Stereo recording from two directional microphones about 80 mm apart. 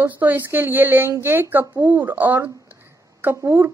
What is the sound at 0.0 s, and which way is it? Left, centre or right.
A woman's voice, right.